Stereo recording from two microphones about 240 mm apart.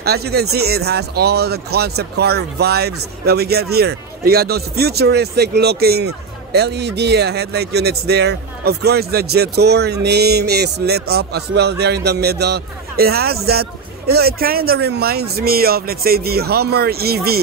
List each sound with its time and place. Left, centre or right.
0.0 s speech: right